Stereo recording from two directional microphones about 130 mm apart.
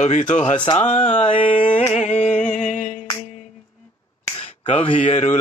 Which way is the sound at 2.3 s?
75° left (ahead or behind).